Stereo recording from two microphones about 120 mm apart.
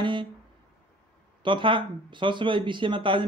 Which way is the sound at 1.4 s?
45° right (ahead or behind).